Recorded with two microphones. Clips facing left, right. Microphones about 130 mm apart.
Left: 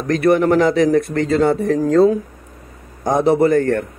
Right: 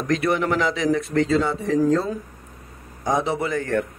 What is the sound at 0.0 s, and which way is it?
Speech, 45° left (ahead or behind).